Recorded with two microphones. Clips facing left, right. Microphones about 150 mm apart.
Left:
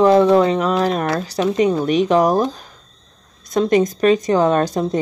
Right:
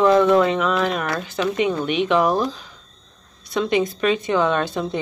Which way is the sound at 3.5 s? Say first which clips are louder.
Left 5 dB; 40° left (ahead or behind).